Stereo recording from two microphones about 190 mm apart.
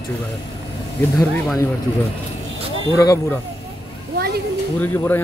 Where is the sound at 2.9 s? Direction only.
15° left (ahead or behind).